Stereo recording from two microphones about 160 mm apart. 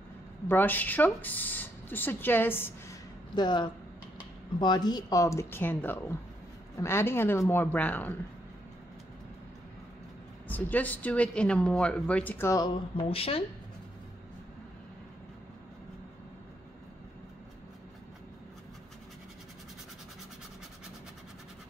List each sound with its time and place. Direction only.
0.5 s speech: 10° left (ahead or behind)
3.3 s speech: 30° left (ahead or behind); by 8.1 s 10° left (ahead or behind)
10.5 s speech: 10° left (ahead or behind)
12.9 s speech: 35° left (ahead or behind)